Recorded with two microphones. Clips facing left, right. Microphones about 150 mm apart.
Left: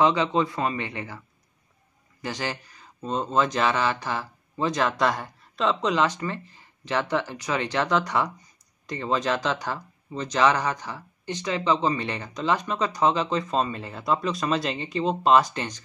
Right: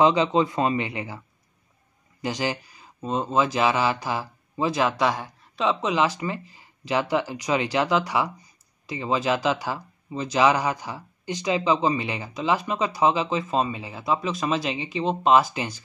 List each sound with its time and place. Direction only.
0.0 s speech: 20° right (ahead or behind)
2.2 s speech: 15° right (ahead or behind)